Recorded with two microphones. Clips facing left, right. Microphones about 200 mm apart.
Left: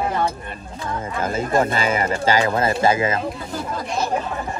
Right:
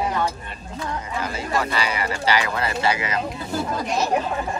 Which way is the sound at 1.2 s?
50° left (ahead or behind).